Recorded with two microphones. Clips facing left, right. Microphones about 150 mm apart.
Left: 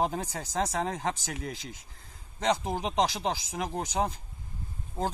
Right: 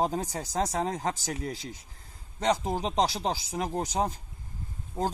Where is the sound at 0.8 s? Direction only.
35° right (ahead or behind).